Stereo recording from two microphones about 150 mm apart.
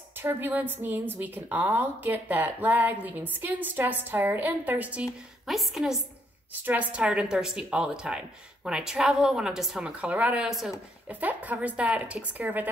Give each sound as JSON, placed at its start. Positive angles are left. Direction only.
{"t": 0.2, "sound": "a woman's voice", "side_deg": -15}
{"t": 6.5, "sound": "a woman's voice", "side_deg": -10}